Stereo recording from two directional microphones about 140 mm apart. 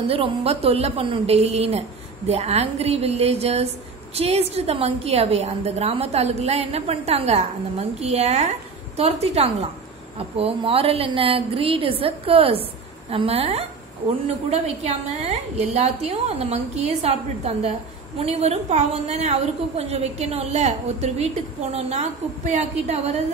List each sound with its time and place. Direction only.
0.1 s a woman's voice: 45° right (ahead or behind)